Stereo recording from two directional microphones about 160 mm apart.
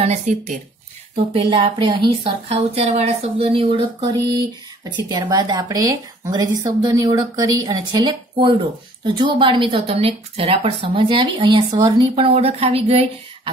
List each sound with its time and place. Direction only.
0.0 s speech: 45° right (ahead or behind)